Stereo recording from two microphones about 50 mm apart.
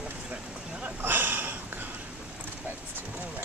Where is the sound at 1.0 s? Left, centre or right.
Right.